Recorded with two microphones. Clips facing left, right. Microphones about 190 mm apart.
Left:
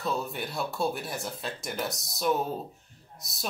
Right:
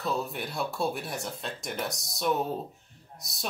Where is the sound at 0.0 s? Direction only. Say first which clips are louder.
Even; centre (ahead or behind).